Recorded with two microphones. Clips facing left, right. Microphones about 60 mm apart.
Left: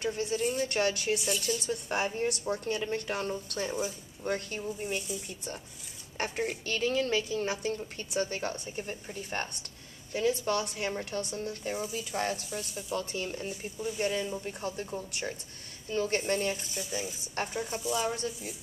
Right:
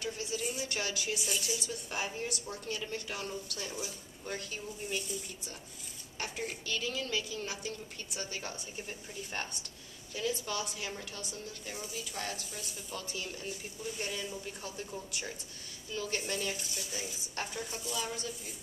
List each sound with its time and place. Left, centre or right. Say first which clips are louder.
0.0 s a woman's voice: left 7 dB; left
1.2 s speech: left 4 dB; centre
1.7 s a woman's voice: left 7 dB; left
13.7 s speech: left 8 dB; centre
14.0 s a woman's voice: left 10 dB; left
17.9 s a woman's voice: left 7 dB; left